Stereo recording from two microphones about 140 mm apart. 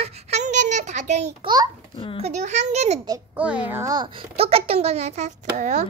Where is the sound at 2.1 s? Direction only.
55° right (ahead or behind).